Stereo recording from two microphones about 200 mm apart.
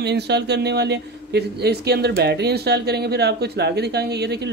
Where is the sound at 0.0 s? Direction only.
55° right (ahead or behind).